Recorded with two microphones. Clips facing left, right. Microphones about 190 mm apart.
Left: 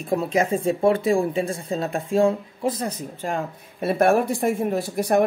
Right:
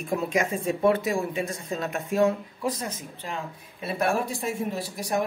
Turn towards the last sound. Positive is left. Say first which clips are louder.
# left 8 dB
turn(degrees=55)  # may be behind; listen again after turning